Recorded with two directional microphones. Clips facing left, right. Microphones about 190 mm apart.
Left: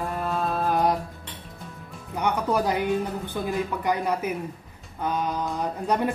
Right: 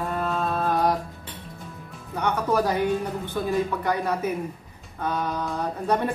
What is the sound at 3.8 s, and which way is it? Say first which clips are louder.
Speech: even; 15° left (ahead or behind).